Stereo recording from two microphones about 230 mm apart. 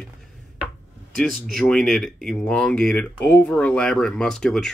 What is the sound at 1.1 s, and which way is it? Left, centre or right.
Speech, centre.